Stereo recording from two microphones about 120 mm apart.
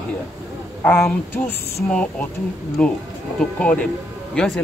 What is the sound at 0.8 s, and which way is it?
Speech, 10° left (ahead or behind).